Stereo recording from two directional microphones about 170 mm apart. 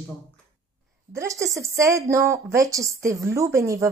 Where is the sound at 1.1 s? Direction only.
20° right (ahead or behind).